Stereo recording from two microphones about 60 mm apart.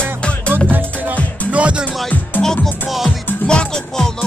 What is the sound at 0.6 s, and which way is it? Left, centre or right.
Music, right.